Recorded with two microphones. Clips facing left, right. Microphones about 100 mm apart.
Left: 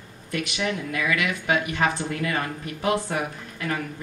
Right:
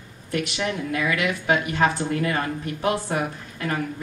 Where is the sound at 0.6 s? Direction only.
30° right (ahead or behind).